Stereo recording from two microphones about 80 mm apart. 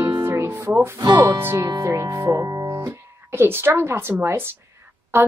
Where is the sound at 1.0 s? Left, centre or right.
Right.